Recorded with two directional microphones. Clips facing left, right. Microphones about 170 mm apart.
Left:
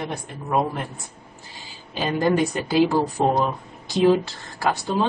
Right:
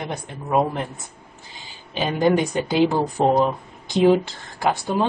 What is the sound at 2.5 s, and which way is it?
A woman's voice, 20° right (ahead or behind).